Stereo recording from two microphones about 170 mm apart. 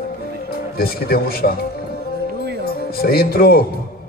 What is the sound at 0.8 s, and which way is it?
Speech, 65° left (ahead or behind).